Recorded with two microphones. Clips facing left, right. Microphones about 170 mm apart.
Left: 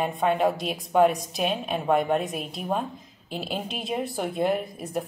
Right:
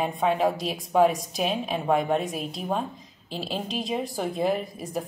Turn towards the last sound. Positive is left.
turn(degrees=0)  # may be behind; listen again after turning